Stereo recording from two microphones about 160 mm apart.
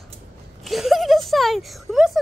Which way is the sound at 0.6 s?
Centre (ahead or behind).